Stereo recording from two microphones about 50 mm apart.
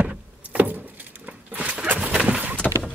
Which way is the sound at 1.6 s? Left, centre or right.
Right.